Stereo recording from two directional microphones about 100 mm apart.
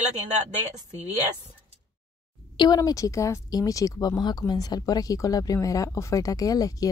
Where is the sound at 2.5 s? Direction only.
45° left (ahead or behind).